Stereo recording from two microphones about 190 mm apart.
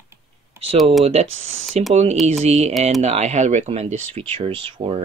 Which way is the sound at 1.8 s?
35° right (ahead or behind).